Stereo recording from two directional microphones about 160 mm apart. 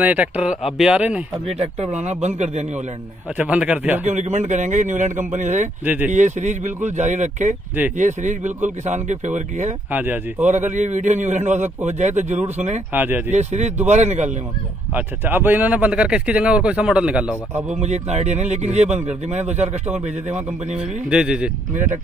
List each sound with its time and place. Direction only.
0.0 s a man's voice: 10° right (ahead or behind)
1.6 s speech: 45° right (ahead or behind)
3.3 s a man's voice: 10° right (ahead or behind)
4.0 s speech: 45° right (ahead or behind)
9.8 s a man's voice: 10° right (ahead or behind)
10.4 s speech: 50° right (ahead or behind)
12.9 s a man's voice: 10° right (ahead or behind)
13.3 s speech: 45° right (ahead or behind)
15.0 s a man's voice: 10° right (ahead or behind)
17.6 s speech: 45° right (ahead or behind)
20.7 s speech: 5° right (ahead or behind)